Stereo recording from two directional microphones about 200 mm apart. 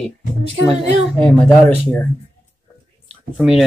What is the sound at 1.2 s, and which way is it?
Speech, 5° left (ahead or behind).